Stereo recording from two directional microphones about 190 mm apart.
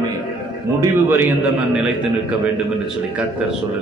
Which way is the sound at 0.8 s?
10° right (ahead or behind).